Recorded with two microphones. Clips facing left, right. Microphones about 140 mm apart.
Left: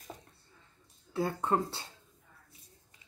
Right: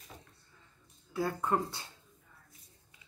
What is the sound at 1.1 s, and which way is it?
Speech, 25° left (ahead or behind).